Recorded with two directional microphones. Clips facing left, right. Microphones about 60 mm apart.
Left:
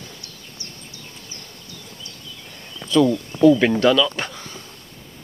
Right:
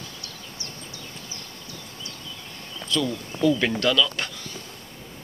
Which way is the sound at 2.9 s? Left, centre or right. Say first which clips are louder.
Left 9 dB; left.